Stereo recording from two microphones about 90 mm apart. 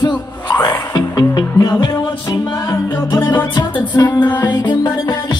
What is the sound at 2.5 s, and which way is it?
Music, 25° left (ahead or behind).